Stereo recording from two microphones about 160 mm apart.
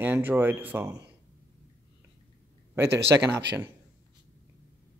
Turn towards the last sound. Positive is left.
turn(degrees=-15)  # may be behind; listen again after turning